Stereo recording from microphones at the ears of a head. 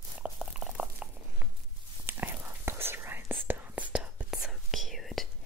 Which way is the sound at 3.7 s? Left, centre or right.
Centre.